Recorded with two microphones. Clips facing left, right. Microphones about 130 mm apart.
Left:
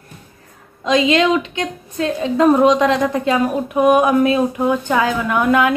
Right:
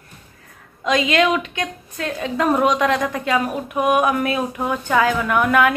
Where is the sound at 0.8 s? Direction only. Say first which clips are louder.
Left 3 dB; 25° left (ahead or behind).